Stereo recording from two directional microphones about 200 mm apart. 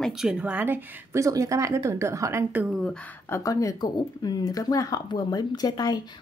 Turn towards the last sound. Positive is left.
turn(degrees=20)  # may be behind; listen again after turning